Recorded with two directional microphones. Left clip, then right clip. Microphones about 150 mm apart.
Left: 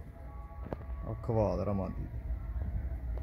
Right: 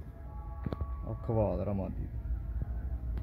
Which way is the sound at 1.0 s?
40° left (ahead or behind).